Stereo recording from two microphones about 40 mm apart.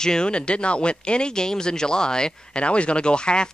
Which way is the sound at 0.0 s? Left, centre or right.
Centre.